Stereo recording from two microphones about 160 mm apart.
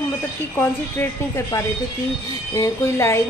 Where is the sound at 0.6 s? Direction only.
15° left (ahead or behind).